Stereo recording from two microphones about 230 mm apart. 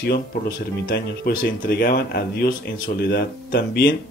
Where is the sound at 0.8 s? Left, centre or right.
Left.